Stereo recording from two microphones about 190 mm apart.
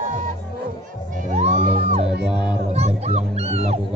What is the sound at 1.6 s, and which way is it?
Music, 60° right (ahead or behind).